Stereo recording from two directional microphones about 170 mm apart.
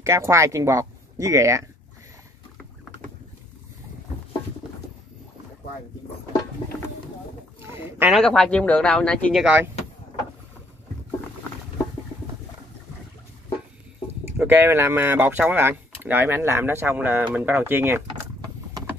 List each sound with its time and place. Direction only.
0.0 s speech: 15° right (ahead or behind)
7.6 s a sound: 15° right (ahead or behind)
8.1 s speech: centre (ahead or behind)
14.4 s speech: 10° right (ahead or behind)